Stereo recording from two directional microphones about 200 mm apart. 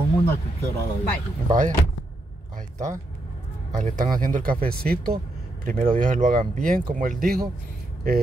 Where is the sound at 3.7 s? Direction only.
40° right (ahead or behind).